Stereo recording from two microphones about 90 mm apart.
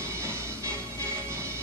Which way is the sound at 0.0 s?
30° right (ahead or behind).